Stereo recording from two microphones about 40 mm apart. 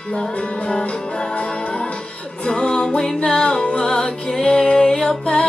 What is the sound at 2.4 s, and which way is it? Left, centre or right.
Music, left.